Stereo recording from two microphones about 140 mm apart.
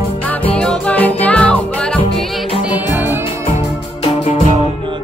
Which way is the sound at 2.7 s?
15° right (ahead or behind).